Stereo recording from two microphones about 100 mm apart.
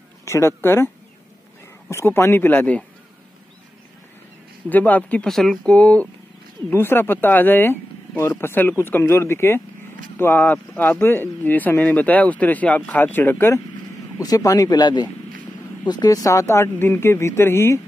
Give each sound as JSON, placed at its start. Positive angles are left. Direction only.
{"t": 0.2, "sound": "speech", "side_deg": 25}
{"t": 1.9, "sound": "speech", "side_deg": 25}
{"t": 4.6, "sound": "speech", "side_deg": 15}
{"t": 5.3, "sound": "speech", "side_deg": 5}
{"t": 14.1, "sound": "speech", "side_deg": 35}